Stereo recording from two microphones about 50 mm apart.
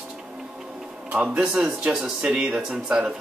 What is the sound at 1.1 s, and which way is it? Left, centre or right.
Speech, right.